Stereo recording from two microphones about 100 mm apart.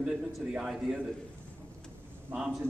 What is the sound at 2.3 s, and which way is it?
Speech, 10° right (ahead or behind).